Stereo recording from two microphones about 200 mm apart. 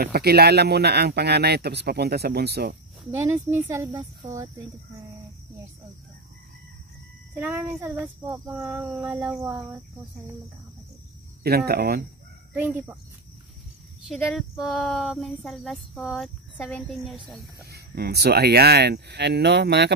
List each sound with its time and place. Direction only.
0.0 s speech: 50° right (ahead or behind)
3.1 s speech: 10° right (ahead or behind)
7.3 s speech: 10° right (ahead or behind)
11.4 s speech: 50° right (ahead or behind)
14.0 s speech: centre (ahead or behind)
17.6 s speech: 50° right (ahead or behind)